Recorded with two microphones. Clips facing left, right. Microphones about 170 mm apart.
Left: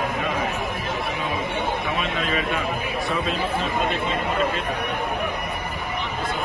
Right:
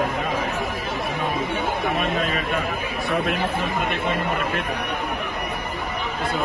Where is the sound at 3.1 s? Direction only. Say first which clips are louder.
Right 4 dB; 60° right (ahead or behind).